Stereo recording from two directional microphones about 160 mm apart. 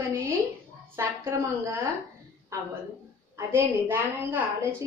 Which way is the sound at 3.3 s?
15° right (ahead or behind).